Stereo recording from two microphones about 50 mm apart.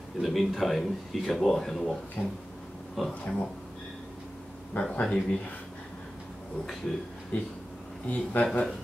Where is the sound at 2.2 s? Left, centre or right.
Left.